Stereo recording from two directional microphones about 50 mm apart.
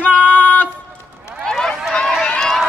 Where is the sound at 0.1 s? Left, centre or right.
Left.